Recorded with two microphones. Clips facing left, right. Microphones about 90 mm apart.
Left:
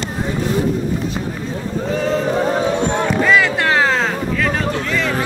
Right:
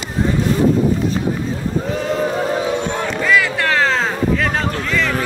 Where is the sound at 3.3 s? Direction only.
25° left (ahead or behind).